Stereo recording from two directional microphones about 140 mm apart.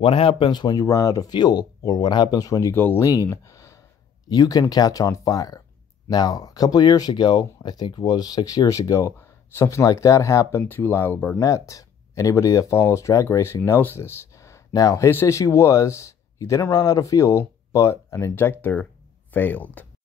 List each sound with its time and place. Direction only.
0.0 s speech: 40° left (ahead or behind)
2.7 s speech: 15° left (ahead or behind)
3.2 s a sound: 25° left (ahead or behind)
4.3 s speech: 30° left (ahead or behind); by 19.9 s 10° left (ahead or behind)